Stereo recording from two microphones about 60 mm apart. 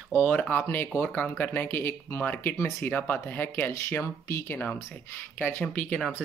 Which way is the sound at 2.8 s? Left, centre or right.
Left.